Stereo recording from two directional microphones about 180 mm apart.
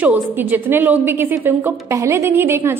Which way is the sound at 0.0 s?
10° right (ahead or behind).